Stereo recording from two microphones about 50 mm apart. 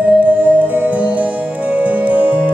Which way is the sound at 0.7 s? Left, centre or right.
Right.